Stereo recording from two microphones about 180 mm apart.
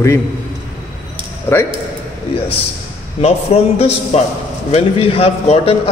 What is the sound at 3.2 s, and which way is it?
A man's voice, 35° left (ahead or behind).